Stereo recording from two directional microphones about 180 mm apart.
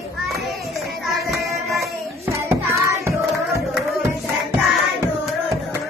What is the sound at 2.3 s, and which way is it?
Hands, 15° right (ahead or behind).